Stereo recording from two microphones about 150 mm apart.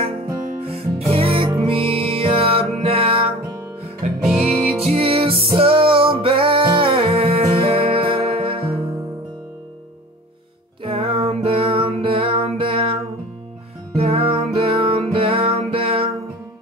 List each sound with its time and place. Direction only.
0.6 s music: 40° right (ahead or behind)
4.2 s music: centre (ahead or behind)
4.6 s music: 45° right (ahead or behind)
10.8 s music: 35° right (ahead or behind)
13.9 s music: 40° right (ahead or behind)